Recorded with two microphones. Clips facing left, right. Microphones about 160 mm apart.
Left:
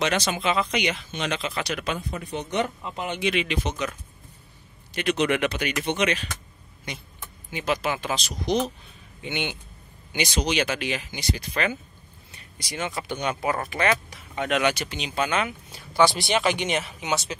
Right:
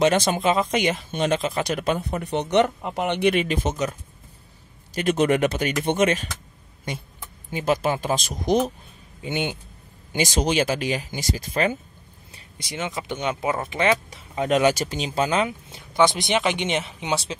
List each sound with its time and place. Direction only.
0.0 s a man's voice: 45° right (ahead or behind)
2.2 s speech: 70° right (ahead or behind); by 3.9 s 45° right (ahead or behind)
4.9 s a man's voice: 45° right (ahead or behind)
7.5 s a man's voice: 45° right (ahead or behind)
9.2 s speech: 35° right (ahead or behind)
12.5 s speech: 25° right (ahead or behind); by 15.1 s 40° right (ahead or behind)
15.2 s speech: 30° right (ahead or behind)